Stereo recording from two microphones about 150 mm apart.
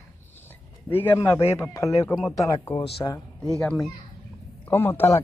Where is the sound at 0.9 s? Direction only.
15° left (ahead or behind).